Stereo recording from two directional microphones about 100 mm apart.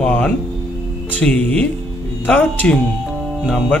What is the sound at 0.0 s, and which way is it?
Speech, 10° left (ahead or behind).